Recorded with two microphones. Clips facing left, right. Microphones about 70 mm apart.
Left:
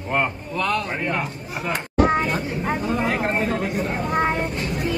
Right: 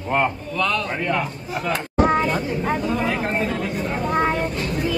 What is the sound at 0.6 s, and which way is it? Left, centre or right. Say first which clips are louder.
Speech: even; left.